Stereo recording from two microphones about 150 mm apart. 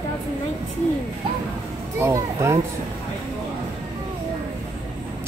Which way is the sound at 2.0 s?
20° right (ahead or behind).